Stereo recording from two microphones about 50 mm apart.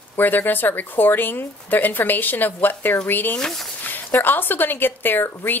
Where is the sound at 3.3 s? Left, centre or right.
Centre.